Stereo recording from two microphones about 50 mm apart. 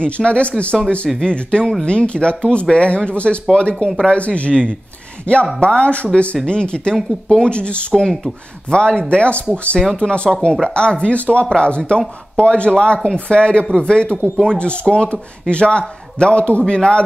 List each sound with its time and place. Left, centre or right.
0.0 s speech: left